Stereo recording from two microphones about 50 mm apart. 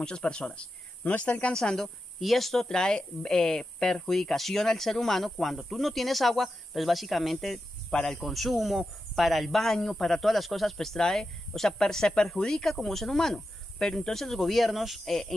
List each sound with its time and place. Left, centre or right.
0.0 s speech: centre
1.5 s speech: centre
2.6 s speech: centre
8.2 s speech: centre